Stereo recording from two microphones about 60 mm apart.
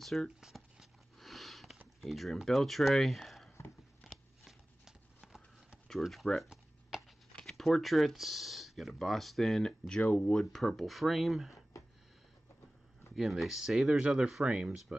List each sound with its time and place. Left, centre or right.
0.0 s speech: centre
0.4 s a sound: centre
1.2 s sniff: centre
2.0 s speech: centre
4.0 s a sound: centre
5.9 s speech: centre
10.0 s speech: left
10.3 s speech: centre
13.1 s speech: centre